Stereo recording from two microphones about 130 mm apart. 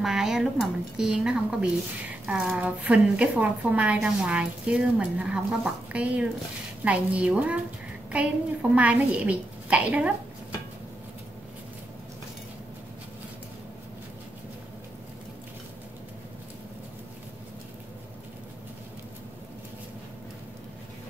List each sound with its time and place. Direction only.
0.0 s speech: 5° right (ahead or behind)
8.7 s speech: 10° right (ahead or behind)